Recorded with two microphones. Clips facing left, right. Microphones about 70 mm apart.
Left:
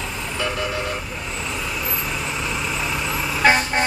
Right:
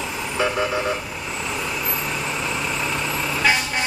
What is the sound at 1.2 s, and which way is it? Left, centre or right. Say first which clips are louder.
Vehicle: right 2 dB; centre.